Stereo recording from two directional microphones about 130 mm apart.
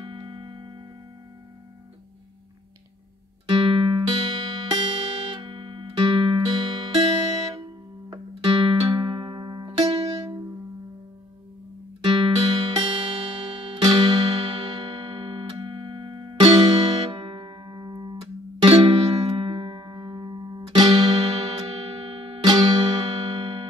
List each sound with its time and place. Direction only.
0.0 s music: 40° right (ahead or behind)
3.4 s music: 40° right (ahead or behind)
12.0 s music: 40° right (ahead or behind)
18.1 s music: 45° right (ahead or behind)
22.5 s music: 35° right (ahead or behind)